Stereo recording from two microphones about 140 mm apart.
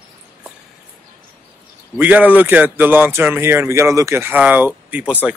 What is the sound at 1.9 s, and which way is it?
Speech, 10° right (ahead or behind).